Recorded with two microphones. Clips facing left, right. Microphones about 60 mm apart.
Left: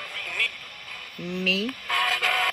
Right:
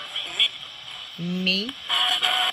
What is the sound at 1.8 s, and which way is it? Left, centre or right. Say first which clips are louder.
Music: even; left.